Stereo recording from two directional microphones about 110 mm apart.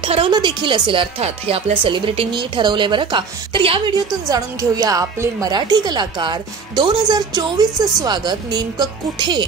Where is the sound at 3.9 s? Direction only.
35° right (ahead or behind).